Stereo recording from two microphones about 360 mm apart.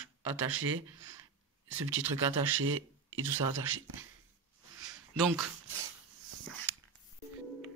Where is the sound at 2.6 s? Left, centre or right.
Right.